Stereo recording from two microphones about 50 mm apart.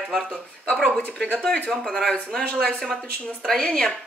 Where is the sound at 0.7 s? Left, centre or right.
Centre.